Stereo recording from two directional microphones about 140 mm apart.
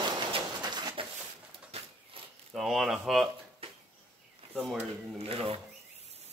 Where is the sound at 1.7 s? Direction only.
45° right (ahead or behind).